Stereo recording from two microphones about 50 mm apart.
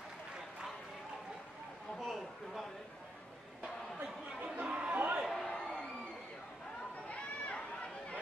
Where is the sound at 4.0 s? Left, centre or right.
Right.